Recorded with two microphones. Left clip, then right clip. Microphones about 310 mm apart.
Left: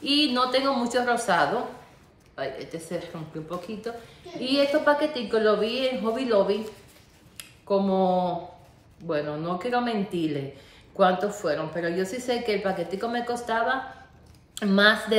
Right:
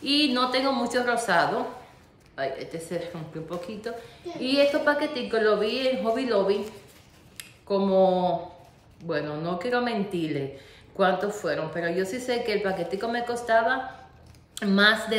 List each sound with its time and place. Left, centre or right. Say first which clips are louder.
0.0 s a woman's voice: left 1 dB; centre